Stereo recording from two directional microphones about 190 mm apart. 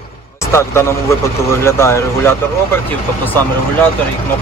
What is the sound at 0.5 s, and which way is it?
Speech, 15° left (ahead or behind).